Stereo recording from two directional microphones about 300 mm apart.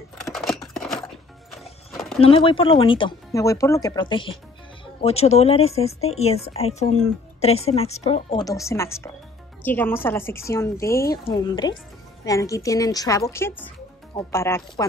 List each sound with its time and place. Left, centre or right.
0.2 s scissors: centre
0.7 s music: centre
1.6 s clip-clop: centre
2.1 s a woman's voice: centre